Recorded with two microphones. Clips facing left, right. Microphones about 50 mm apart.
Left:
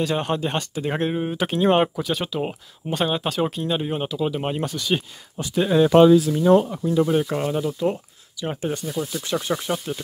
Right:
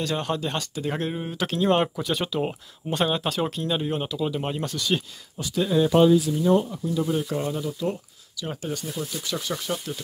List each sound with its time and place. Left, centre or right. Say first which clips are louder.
0.0 s speech: left 4 dB; centre
2.0 s speech: left 1 dB; centre
4.6 s speech: left 2 dB; centre
5.7 s speech: left 5 dB; left
6.3 s speech: left 5 dB; left
7.1 s speech: left 4 dB; left